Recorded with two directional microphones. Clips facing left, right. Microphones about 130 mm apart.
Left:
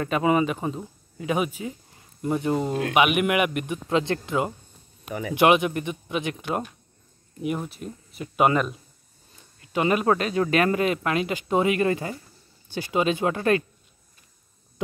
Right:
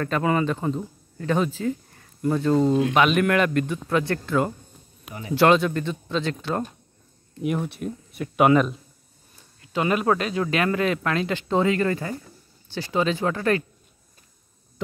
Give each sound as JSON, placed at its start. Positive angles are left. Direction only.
{"t": 0.0, "sound": "a man's voice", "side_deg": 15}
{"t": 7.4, "sound": "speech", "side_deg": 0}
{"t": 9.8, "sound": "a man's voice", "side_deg": 20}
{"t": 10.1, "sound": "speech", "side_deg": 35}
{"t": 10.8, "sound": "a man's voice", "side_deg": 10}